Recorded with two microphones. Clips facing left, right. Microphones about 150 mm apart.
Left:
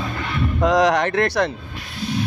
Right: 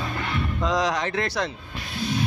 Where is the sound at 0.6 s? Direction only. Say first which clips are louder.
Left 8 dB; 60° left (ahead or behind).